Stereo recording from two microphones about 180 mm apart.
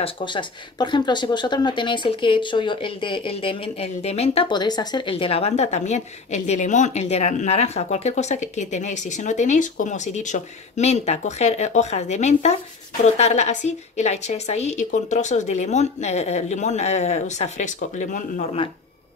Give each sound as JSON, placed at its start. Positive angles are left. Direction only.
{"t": 0.0, "sound": "speech", "side_deg": 25}